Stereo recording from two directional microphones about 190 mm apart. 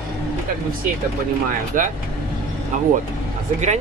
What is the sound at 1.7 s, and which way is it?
Speech, 45° right (ahead or behind).